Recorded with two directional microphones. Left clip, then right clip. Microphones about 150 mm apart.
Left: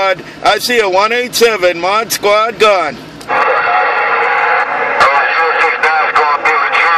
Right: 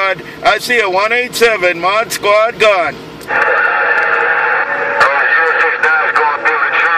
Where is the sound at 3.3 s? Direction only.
55° left (ahead or behind).